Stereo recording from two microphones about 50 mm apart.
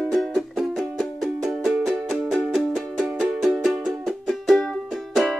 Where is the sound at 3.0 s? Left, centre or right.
Centre.